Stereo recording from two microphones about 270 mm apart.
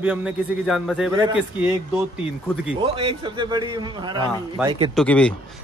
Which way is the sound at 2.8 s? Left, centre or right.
Centre.